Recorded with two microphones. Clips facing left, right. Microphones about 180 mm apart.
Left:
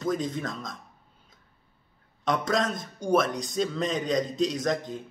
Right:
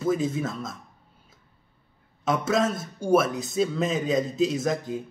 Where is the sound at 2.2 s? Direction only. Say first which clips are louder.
Right 3 dB; 5° right (ahead or behind).